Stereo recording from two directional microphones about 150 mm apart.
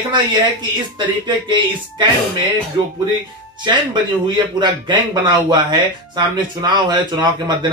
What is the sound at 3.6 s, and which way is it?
Speech, 30° right (ahead or behind).